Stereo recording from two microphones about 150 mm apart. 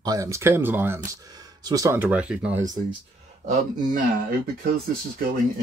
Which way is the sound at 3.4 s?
65° right (ahead or behind).